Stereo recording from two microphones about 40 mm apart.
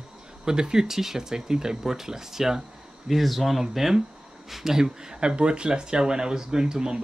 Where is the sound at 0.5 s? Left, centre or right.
Centre.